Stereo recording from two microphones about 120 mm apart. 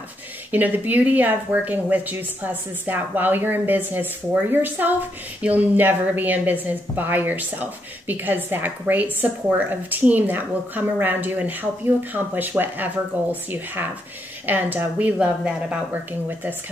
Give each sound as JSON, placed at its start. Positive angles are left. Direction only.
{"t": 0.5, "sound": "speech", "side_deg": -15}